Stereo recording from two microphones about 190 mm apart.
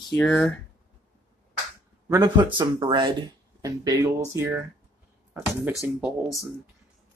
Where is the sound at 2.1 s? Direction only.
20° right (ahead or behind).